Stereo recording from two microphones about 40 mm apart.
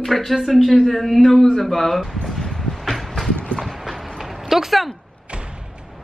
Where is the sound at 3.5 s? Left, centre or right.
Centre.